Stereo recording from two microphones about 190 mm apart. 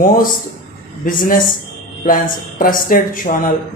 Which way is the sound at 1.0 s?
45° left (ahead or behind).